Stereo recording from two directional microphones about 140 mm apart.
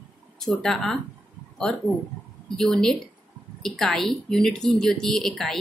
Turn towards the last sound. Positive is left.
turn(degrees=0)  # may be behind; listen again after turning